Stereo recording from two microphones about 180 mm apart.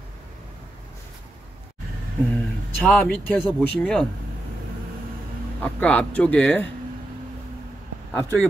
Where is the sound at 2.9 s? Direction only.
5° left (ahead or behind).